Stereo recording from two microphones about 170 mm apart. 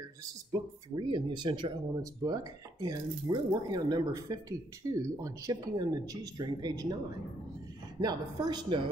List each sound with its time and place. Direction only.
0.5 s speech: 25° right (ahead or behind)
8.0 s speech: 25° right (ahead or behind)